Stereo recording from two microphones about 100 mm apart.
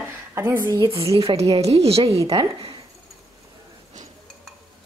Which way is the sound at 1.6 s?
90° right.